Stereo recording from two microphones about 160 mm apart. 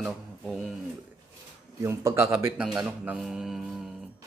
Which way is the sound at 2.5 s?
Centre (ahead or behind).